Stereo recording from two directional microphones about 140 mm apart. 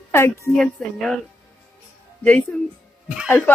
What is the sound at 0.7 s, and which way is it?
Speech, centre (ahead or behind).